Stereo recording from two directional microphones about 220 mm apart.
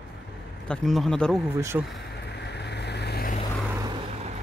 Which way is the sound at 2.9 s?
50° left (ahead or behind).